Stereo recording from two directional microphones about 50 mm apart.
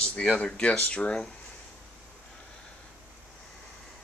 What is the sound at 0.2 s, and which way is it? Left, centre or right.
Speech, centre.